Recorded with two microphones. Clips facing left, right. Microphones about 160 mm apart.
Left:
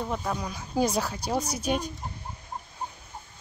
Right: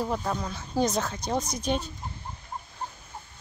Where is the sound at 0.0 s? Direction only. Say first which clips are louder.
Right 2 dB; centre (ahead or behind).